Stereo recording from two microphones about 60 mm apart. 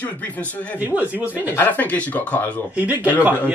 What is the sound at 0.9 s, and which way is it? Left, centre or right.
Speech, right.